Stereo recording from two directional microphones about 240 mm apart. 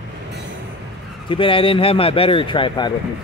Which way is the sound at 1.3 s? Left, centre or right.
Left.